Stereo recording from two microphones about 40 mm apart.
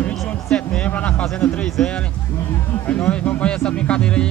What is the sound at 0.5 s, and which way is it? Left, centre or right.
A man's voice, left.